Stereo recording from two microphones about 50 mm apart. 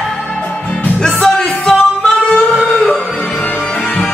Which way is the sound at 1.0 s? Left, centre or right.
Centre.